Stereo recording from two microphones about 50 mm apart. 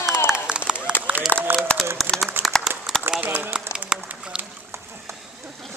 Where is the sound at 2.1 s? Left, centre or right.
Right.